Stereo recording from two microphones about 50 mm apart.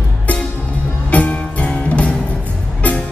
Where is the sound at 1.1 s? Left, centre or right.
Left.